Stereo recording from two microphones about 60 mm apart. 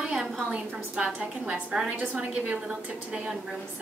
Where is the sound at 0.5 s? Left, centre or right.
Centre.